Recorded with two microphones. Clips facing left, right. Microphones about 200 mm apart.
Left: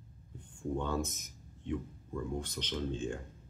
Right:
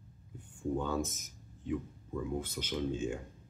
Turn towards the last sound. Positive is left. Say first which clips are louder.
# right 2 dB
turn(degrees=-10)  # may be behind; listen again after turning